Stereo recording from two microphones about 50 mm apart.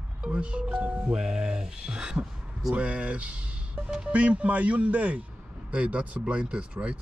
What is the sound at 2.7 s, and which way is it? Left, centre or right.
Speech, right.